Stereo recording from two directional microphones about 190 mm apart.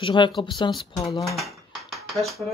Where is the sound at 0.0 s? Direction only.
25° left (ahead or behind).